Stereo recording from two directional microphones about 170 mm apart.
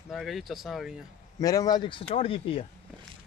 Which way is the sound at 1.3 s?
20° left (ahead or behind).